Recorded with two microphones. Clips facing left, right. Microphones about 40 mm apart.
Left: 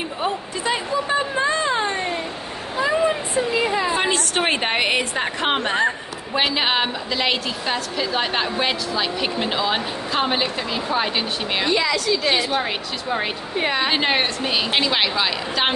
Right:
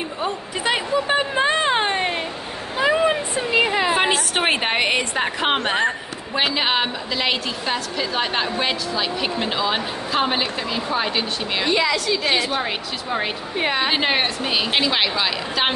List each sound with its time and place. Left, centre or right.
0.7 s a sound: right
4.1 s a woman's voice: centre
5.6 s speech: right
5.9 s a woman's voice: centre
11.7 s a woman's voice: centre